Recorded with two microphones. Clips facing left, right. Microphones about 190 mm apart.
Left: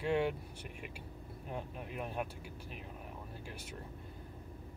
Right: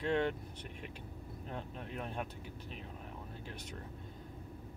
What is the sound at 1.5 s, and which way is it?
Speech, 10° left (ahead or behind).